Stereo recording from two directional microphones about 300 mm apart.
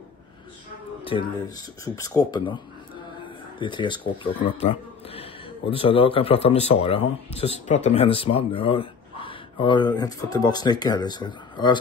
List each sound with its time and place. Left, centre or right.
1.1 s speech: centre